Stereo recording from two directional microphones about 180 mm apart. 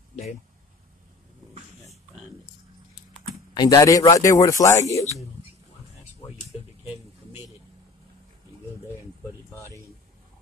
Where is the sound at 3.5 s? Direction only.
20° left (ahead or behind).